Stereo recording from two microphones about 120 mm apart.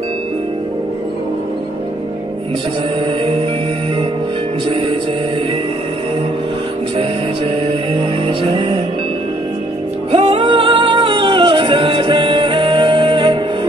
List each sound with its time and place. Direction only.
4.6 s music: 50° right (ahead or behind)
7.6 s music: 45° right (ahead or behind)
10.1 s music: 50° right (ahead or behind)